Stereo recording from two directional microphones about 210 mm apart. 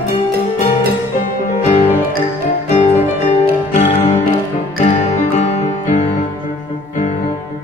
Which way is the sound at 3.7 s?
35° left (ahead or behind).